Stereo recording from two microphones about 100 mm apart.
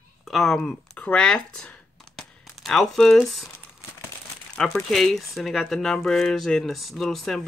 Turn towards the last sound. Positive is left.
turn(degrees=5)  # may be behind; listen again after turning